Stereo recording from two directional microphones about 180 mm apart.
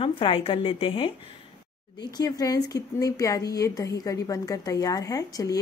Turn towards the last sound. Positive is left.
turn(degrees=20)  # may be behind; listen again after turning